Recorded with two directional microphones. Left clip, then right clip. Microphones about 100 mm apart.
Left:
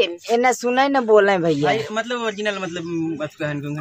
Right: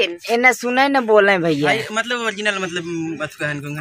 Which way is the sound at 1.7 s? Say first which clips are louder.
Right 2 dB; 25° left (ahead or behind).